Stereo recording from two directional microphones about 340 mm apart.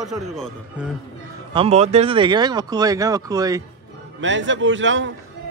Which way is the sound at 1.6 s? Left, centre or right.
Centre.